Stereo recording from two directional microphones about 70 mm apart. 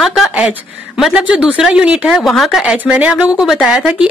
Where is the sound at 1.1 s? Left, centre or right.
Centre.